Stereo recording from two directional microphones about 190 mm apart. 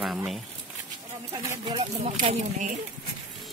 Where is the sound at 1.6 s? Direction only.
30° right (ahead or behind).